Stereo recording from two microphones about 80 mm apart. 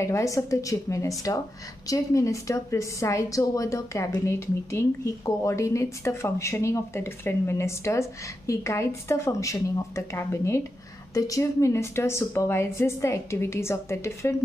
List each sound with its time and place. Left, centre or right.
0.0 s a woman's voice: left